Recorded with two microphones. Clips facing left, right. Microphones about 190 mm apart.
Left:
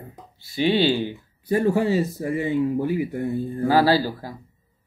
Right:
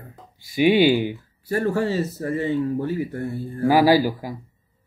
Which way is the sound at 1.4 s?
15° left (ahead or behind).